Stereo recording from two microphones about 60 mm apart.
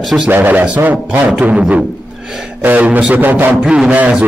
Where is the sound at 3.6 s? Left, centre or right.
Centre.